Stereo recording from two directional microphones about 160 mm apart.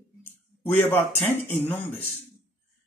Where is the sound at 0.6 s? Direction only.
15° left (ahead or behind).